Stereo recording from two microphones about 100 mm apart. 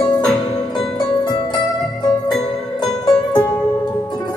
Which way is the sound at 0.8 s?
50° left (ahead or behind).